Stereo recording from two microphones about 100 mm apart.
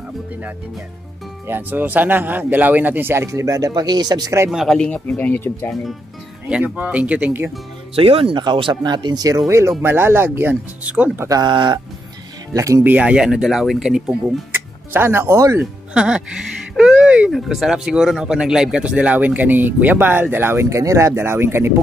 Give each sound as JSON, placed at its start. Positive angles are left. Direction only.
{"t": 1.5, "sound": "a man's voice", "side_deg": -20}
{"t": 4.5, "sound": "speech", "side_deg": -5}
{"t": 4.7, "sound": "speech", "side_deg": 15}
{"t": 6.5, "sound": "speech", "side_deg": -15}
{"t": 7.9, "sound": "speech", "side_deg": -70}
{"t": 9.5, "sound": "a man's voice", "side_deg": -30}
{"t": 11.4, "sound": "speech", "side_deg": -50}
{"t": 12.5, "sound": "speech", "side_deg": -35}
{"t": 12.8, "sound": "speech", "side_deg": -10}
{"t": 14.9, "sound": "a man's voice", "side_deg": -20}
{"t": 15.6, "sound": "music", "side_deg": -10}
{"t": 17.3, "sound": "speech", "side_deg": -5}